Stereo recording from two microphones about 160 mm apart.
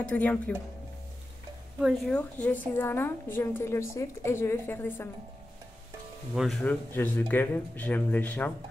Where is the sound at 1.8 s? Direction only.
Centre (ahead or behind).